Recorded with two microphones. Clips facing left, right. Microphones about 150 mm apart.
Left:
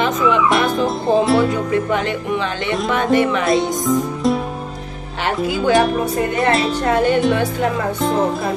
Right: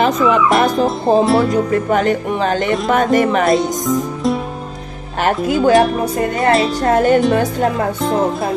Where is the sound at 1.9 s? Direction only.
40° right (ahead or behind).